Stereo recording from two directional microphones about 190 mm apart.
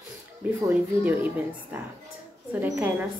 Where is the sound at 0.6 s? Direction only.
10° right (ahead or behind).